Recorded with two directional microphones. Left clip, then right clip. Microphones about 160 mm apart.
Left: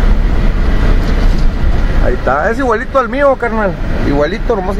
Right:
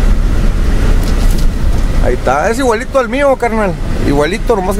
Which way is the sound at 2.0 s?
30° right (ahead or behind).